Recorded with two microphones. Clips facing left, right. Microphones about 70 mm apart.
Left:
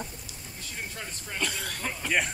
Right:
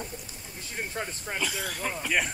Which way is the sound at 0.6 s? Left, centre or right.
Right.